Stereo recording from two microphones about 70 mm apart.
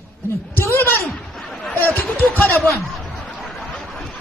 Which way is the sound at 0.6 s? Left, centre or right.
Left.